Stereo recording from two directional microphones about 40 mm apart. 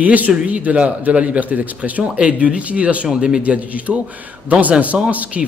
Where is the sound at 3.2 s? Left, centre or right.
Centre.